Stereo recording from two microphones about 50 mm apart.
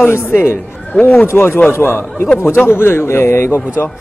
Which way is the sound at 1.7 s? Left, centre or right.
Left.